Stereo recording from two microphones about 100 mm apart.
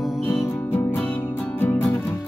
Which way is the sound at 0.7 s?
20° left (ahead or behind).